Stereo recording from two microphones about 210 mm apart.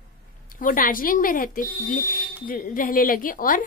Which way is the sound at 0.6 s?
40° left (ahead or behind).